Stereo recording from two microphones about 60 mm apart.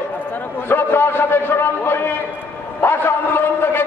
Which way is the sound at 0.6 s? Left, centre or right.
Left.